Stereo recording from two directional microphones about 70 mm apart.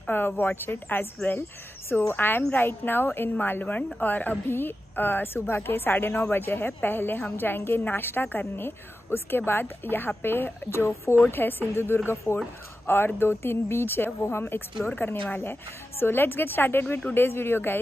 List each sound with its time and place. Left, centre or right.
0.0 s a woman's voice: left